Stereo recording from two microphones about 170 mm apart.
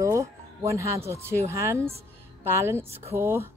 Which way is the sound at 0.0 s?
20° right (ahead or behind).